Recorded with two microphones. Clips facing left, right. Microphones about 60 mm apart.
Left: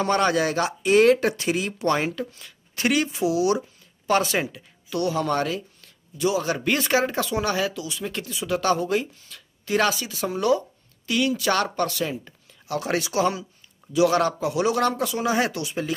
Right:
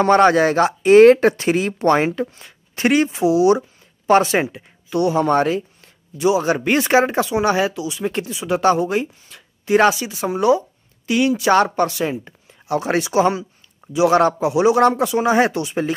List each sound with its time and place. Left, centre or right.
0.0 s a woman's voice: right